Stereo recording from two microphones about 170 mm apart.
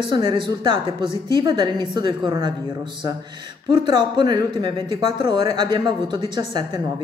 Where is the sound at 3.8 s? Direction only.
25° right (ahead or behind).